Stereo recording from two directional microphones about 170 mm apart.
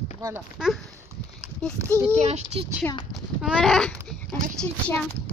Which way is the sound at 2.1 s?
40° right (ahead or behind).